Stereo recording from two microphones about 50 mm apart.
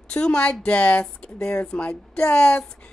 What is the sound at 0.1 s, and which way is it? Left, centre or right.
Speech, centre.